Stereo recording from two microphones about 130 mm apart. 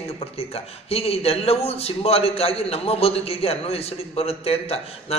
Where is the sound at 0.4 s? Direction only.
50° left (ahead or behind).